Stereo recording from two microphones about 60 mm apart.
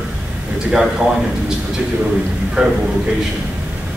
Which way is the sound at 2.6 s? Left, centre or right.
Right.